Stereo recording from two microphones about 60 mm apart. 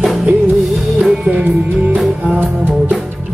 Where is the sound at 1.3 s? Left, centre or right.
Right.